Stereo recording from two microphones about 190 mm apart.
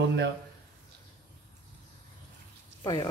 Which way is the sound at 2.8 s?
25° left (ahead or behind).